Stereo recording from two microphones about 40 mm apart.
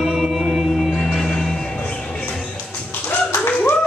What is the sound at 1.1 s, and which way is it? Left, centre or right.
Music, centre.